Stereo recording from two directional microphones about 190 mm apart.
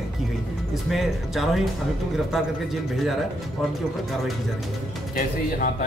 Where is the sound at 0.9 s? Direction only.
Centre (ahead or behind).